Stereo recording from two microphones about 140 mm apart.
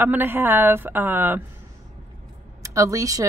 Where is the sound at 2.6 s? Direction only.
20° right (ahead or behind).